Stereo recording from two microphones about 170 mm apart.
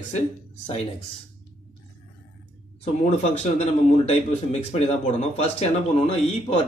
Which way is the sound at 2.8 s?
40° left (ahead or behind).